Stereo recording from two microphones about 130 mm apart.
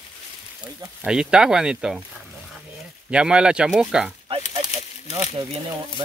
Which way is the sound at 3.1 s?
5° right (ahead or behind).